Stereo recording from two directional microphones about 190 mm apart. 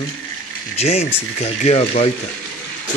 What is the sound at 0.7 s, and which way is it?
Speech, 35° left (ahead or behind).